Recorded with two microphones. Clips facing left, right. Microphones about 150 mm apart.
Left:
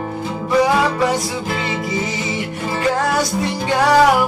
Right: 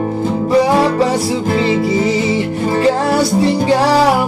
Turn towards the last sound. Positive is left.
turn(degrees=-30)  # may be behind; listen again after turning